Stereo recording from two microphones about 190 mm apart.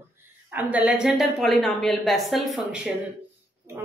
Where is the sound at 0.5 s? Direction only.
10° right (ahead or behind).